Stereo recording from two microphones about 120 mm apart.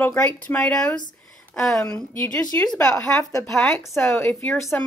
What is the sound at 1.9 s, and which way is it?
A woman's voice, 15° left (ahead or behind).